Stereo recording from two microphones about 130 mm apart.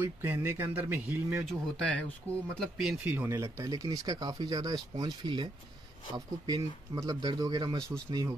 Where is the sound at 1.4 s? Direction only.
10° left (ahead or behind).